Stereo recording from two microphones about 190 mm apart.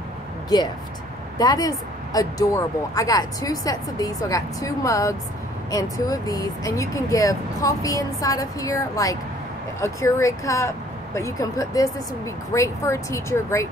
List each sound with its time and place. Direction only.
1.4 s speech: 20° left (ahead or behind)